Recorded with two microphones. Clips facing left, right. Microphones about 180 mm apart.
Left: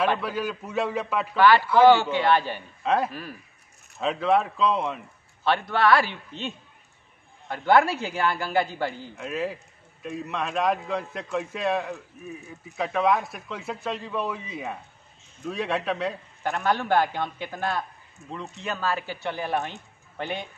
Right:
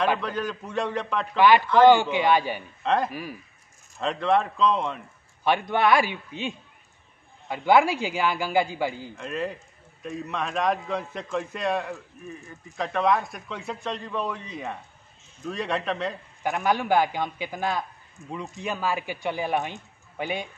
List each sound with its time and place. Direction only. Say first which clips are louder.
0.2 s a man's voice: even; 5° left (ahead or behind)
1.3 s a man's voice: even; 15° right (ahead or behind)
1.6 s a man's voice: even; 10° left (ahead or behind)
1.9 s a man's voice: even; 15° right (ahead or behind)
2.8 s speech: even; 5° left (ahead or behind)
3.1 s a man's voice: right 2 dB; 10° right (ahead or behind)
4.0 s a man's voice: left 1 dB; 5° left (ahead or behind)
5.4 s a man's voice: even; 15° right (ahead or behind)
9.1 s a man's voice: left 1 dB; 5° left (ahead or behind)
16.4 s a man's voice: right 1 dB; 10° right (ahead or behind)